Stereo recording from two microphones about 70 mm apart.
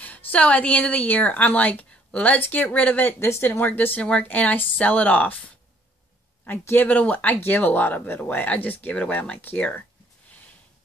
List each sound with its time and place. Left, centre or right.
0.0 s a woman's voice: left
6.6 s a woman's voice: left